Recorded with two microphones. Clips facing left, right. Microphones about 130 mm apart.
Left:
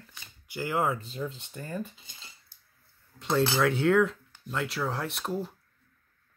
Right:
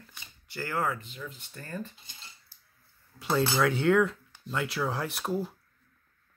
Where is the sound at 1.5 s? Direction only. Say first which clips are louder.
Left 3 dB; 15° left (ahead or behind).